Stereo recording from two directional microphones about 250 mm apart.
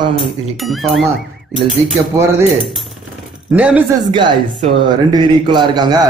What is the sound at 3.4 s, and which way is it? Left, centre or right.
Speech, centre.